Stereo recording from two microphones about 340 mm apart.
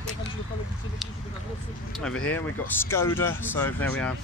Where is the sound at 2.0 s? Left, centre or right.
Centre.